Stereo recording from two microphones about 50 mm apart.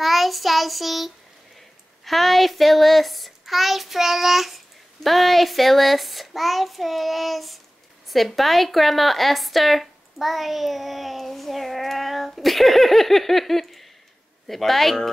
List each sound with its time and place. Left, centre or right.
0.0 s child singing: centre
2.0 s a woman's voice: centre